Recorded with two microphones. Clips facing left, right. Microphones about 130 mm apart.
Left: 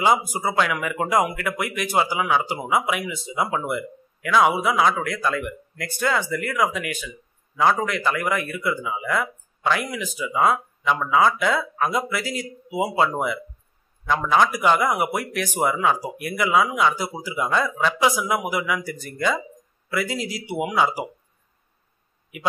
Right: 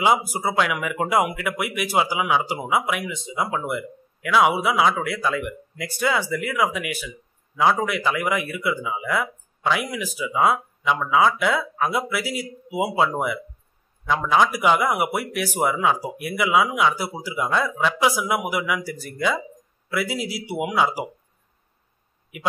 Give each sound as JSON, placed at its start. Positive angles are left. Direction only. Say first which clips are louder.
{"t": 0.3, "sound": "a man's voice", "louder": "even", "side_deg": -5}